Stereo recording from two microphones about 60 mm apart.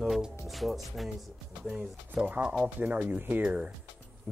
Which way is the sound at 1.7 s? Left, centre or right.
Centre.